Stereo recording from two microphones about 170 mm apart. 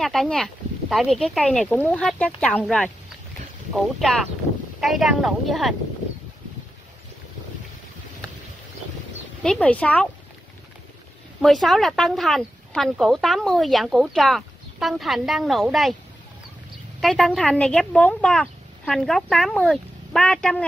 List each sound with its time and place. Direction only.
0.0 s speech: centre (ahead or behind)
9.4 s speech: 5° left (ahead or behind)
11.4 s speech: centre (ahead or behind)
17.0 s speech: centre (ahead or behind)